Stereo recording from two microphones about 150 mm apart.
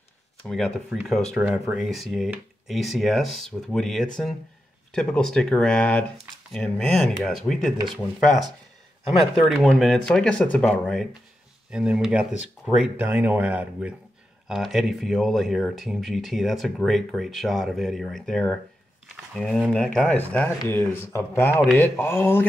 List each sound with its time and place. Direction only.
0.4 s speech: 5° left (ahead or behind)
7.7 s speech: 30° right (ahead or behind)
9.5 s speech: centre (ahead or behind)
11.7 s speech: 5° right (ahead or behind); by 22.5 s 15° left (ahead or behind)